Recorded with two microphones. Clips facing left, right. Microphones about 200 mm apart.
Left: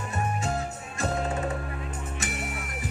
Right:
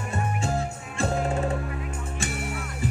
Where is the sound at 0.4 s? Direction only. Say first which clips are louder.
Right 2 dB; 30° right (ahead or behind).